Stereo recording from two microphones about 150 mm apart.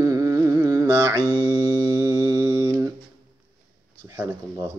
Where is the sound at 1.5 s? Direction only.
25° right (ahead or behind).